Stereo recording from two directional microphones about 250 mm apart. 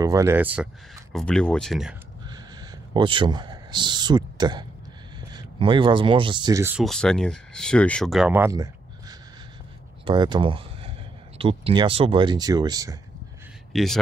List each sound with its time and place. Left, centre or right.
0.0 s speech: centre
2.2 s a sound: centre
5.3 s speech: centre
10.0 s speech: centre
13.7 s speech: centre